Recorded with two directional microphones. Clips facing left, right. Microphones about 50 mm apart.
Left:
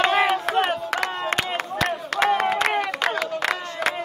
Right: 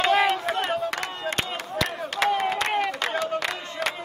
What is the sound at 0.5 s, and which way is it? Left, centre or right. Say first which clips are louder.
Crowd: left 3 dB; left.